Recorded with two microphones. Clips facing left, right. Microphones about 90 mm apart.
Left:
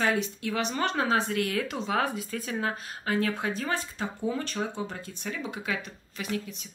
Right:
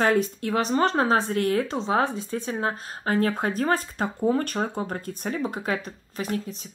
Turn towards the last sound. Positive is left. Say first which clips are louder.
# right 4 dB
turn(degrees=-40)  # may be behind; listen again after turning